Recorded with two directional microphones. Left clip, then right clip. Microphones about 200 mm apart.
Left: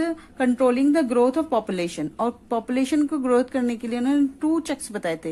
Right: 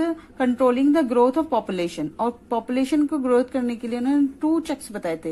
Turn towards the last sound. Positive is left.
turn(degrees=15)  # may be behind; listen again after turning